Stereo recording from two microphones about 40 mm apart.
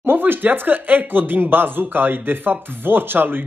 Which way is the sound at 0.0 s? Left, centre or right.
Right.